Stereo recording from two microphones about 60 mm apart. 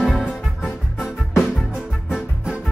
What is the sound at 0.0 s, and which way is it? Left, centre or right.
Music, centre.